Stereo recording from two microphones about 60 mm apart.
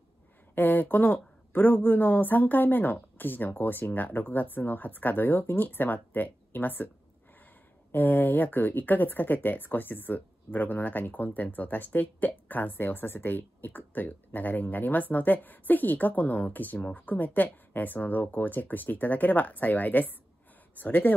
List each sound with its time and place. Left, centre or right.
0.6 s speech: left
7.9 s speech: left